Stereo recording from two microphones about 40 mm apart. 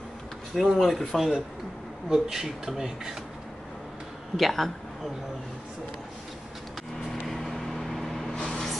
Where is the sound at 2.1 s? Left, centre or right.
Centre.